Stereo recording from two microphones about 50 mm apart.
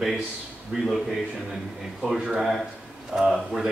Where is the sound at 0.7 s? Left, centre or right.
Centre.